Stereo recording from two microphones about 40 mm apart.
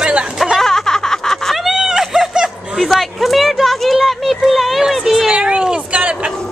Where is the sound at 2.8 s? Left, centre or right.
Centre.